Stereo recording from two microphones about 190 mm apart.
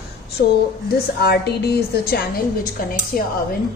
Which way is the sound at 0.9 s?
55° left (ahead or behind).